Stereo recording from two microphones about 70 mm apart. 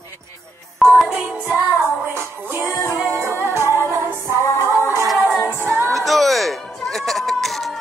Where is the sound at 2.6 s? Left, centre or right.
Left.